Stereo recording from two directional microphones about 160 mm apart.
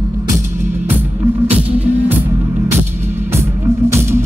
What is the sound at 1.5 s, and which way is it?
Music, 10° right (ahead or behind).